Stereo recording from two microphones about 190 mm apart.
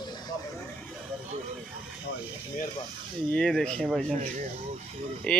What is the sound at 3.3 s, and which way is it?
Speech, 5° left (ahead or behind).